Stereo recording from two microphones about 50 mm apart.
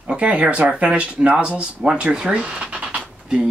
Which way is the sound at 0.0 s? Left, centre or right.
Right.